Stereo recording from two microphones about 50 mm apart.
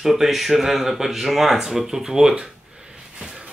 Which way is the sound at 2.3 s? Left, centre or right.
Centre.